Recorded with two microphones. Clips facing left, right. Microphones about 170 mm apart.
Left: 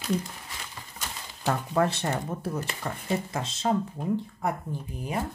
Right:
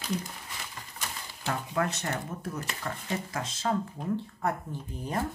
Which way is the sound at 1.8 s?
30° left (ahead or behind).